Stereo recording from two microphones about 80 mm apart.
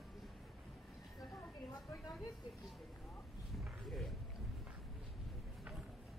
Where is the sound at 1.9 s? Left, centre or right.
Left.